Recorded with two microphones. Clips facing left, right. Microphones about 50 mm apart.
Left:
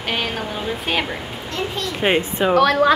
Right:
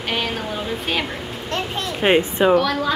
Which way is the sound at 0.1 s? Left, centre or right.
Centre.